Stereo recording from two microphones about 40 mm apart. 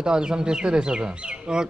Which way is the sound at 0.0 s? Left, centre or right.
Centre.